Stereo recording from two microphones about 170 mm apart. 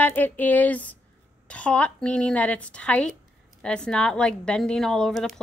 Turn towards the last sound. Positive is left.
turn(degrees=0)  # may be behind; listen again after turning